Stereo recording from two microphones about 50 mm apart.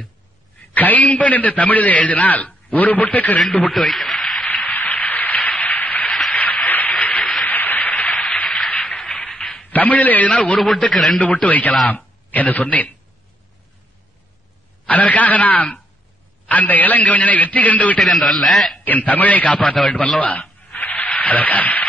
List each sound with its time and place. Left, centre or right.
0.7 s a man's voice: left
3.7 s a man's voice: centre
4.0 s a sound: centre
4.5 s a sound: left
9.7 s a man's voice: left
10.6 s a man's voice: centre
11.4 s a man's voice: left
14.9 s a man's voice: left
18.0 s a man's voice: centre
18.9 s a man's voice: left
20.7 s a sound: left